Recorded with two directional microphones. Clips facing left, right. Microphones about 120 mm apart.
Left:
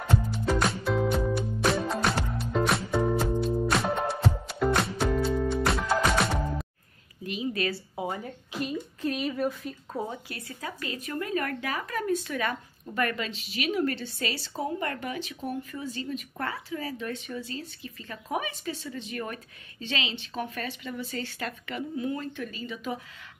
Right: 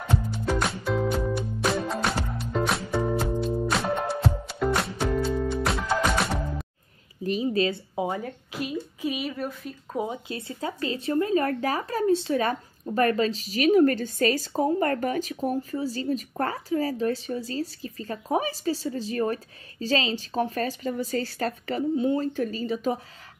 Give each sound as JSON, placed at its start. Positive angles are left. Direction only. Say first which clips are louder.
{"t": 0.0, "sound": "music", "louder": "even", "side_deg": 0}
{"t": 7.4, "sound": "a sound", "louder": "right 3 dB", "side_deg": -25}
{"t": 8.1, "sound": "speech", "louder": "right 3 dB", "side_deg": 0}
{"t": 9.9, "sound": "a woman's voice", "louder": "right 5 dB", "side_deg": -20}